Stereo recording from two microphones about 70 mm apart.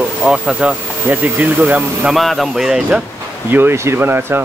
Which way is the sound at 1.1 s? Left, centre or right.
Right.